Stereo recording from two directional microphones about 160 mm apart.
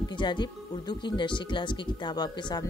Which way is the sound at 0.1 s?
30° left (ahead or behind).